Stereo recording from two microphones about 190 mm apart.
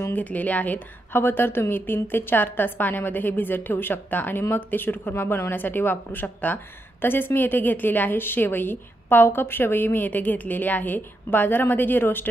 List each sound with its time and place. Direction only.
0.0 s speech: 10° left (ahead or behind)